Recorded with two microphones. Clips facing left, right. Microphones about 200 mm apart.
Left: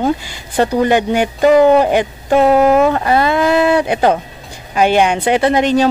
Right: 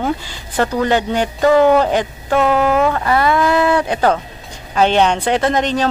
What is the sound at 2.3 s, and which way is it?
A woman's voice, 35° left (ahead or behind).